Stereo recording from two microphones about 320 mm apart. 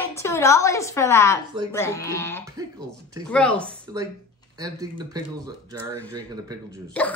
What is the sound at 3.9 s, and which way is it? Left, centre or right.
Speech, centre.